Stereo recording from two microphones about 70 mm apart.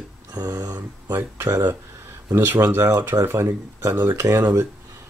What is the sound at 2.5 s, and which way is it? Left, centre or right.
Speech, right.